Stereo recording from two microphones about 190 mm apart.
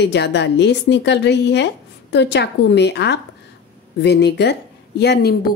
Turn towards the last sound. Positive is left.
turn(degrees=55)  # may be behind; listen again after turning